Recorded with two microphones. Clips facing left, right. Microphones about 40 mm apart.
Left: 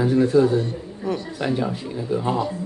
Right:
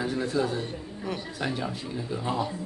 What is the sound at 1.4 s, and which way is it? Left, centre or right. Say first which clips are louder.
Speech: left 7 dB; left.